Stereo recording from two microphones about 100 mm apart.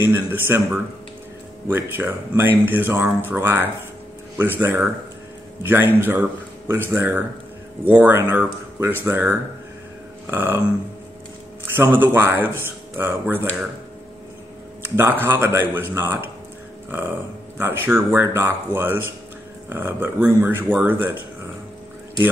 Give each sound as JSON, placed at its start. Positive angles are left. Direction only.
{"t": 0.0, "sound": "speech", "side_deg": -20}
{"t": 11.6, "sound": "speech", "side_deg": -20}
{"t": 14.8, "sound": "speech", "side_deg": -20}
{"t": 17.6, "sound": "speech", "side_deg": -25}